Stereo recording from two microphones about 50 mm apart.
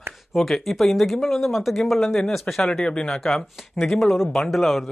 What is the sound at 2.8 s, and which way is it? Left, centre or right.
Speech, centre.